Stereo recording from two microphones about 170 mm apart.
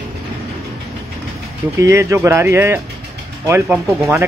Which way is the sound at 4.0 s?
15° right (ahead or behind).